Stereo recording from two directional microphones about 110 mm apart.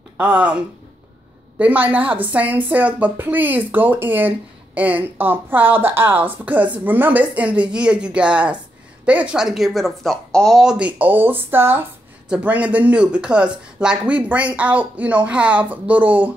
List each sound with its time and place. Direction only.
0.2 s speech: 10° right (ahead or behind)
1.6 s speech: 15° right (ahead or behind)